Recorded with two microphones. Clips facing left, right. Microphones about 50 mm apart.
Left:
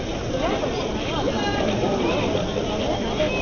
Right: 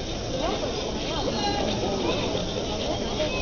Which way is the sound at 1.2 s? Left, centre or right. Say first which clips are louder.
Left 3 dB; left.